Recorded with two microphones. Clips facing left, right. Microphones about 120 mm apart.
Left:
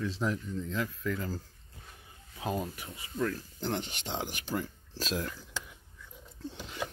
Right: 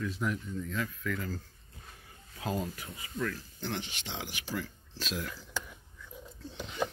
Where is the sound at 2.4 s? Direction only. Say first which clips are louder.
Left 1 dB; 25° left (ahead or behind).